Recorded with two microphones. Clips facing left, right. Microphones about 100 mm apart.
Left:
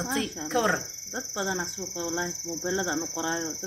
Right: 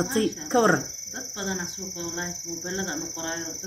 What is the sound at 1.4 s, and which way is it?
Speech, 35° left (ahead or behind).